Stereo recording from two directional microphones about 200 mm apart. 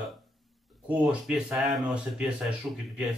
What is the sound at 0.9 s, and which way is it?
Speech, 5° right (ahead or behind).